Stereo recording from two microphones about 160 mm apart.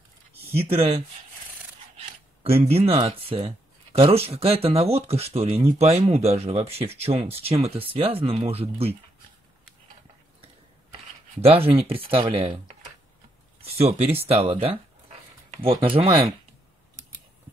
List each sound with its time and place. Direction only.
0.6 s speech: 35° right (ahead or behind)
2.0 s a sound: 40° right (ahead or behind)
3.1 s speech: 35° right (ahead or behind)
11.3 s speech: 35° right (ahead or behind)